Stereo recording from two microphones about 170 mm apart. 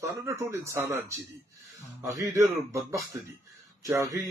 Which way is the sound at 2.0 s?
15° right (ahead or behind).